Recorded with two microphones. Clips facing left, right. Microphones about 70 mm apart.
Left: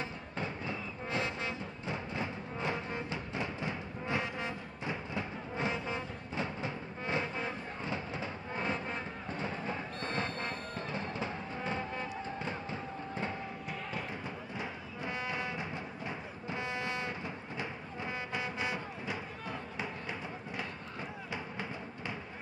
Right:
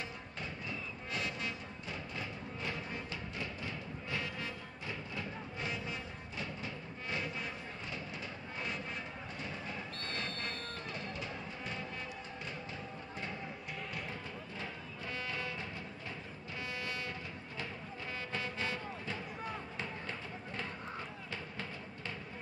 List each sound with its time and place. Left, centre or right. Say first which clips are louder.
0.4 s music: left 5 dB; left
14.6 s music: left 5 dB; centre
16.4 s foghorn: left 5 dB; left
17.6 s music: left 2 dB; centre
19.8 s a sound: left 3 dB; centre
21.3 s music: left 4 dB; centre